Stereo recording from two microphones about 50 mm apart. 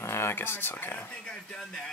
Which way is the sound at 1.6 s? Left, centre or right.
Centre.